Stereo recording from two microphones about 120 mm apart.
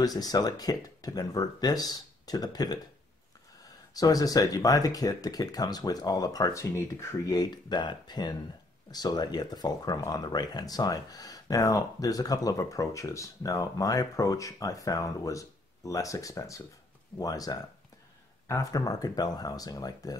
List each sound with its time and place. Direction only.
0.0 s speech: 30° left (ahead or behind)
3.9 s speech: 30° left (ahead or behind)